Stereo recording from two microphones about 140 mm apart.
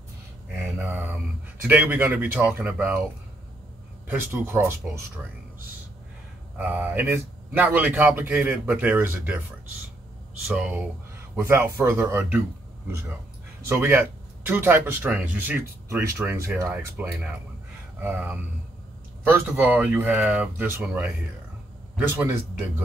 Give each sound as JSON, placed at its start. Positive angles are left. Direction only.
{"t": 0.7, "sound": "mantra", "side_deg": -15}
{"t": 1.7, "sound": "speech", "side_deg": -15}
{"t": 4.1, "sound": "speech", "side_deg": -15}
{"t": 6.6, "sound": "speech", "side_deg": -10}
{"t": 10.4, "sound": "speech", "side_deg": -5}
{"t": 11.1, "sound": "speech", "side_deg": -20}
{"t": 13.7, "sound": "a man's voice", "side_deg": -15}